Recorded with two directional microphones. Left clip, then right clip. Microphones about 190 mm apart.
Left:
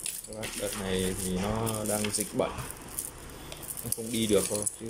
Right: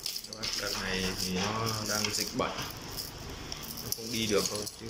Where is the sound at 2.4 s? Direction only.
20° left (ahead or behind).